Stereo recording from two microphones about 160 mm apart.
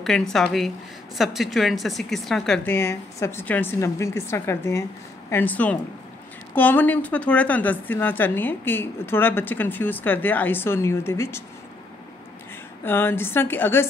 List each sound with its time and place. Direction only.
0.0 s speech: 5° left (ahead or behind)
2.7 s a woman's voice: 15° left (ahead or behind)
12.8 s a woman's voice: 15° left (ahead or behind)